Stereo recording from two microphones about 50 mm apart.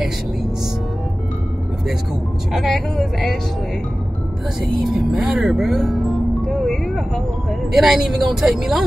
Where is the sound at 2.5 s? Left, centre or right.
Centre.